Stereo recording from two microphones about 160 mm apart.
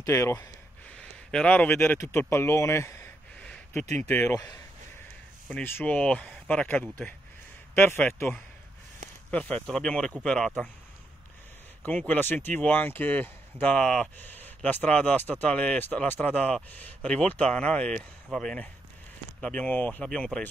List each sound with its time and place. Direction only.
0.0 s speech: 20° left (ahead or behind)
0.8 s a sound: 5° left (ahead or behind)
4.1 s speech: 10° left (ahead or behind)
11.8 s speech: 10° left (ahead or behind)